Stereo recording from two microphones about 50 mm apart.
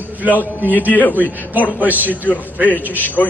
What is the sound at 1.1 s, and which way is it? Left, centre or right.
A man's voice, right.